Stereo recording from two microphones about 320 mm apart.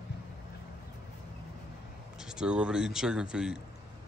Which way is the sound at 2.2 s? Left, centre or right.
Centre.